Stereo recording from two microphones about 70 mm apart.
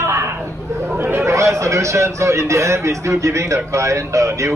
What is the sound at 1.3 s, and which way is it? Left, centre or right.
A man's voice, right.